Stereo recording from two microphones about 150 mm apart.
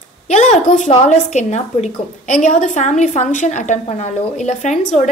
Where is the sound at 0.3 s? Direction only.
50° left (ahead or behind).